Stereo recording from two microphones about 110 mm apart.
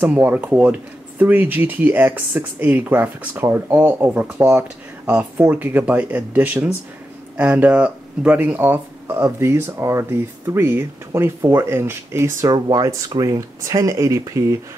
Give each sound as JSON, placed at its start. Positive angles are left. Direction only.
{"t": 0.0, "sound": "speech", "side_deg": -15}
{"t": 12.5, "sound": "speech", "side_deg": -40}